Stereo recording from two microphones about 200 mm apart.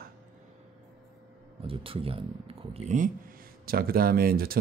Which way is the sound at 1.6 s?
25° right (ahead or behind).